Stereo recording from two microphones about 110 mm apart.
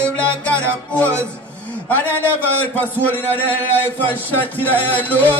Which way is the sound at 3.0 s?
15° left (ahead or behind).